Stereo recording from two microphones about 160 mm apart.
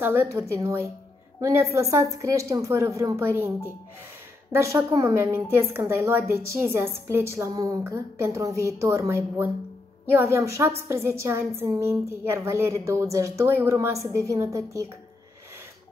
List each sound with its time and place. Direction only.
0.0 s a woman's voice: 15° right (ahead or behind)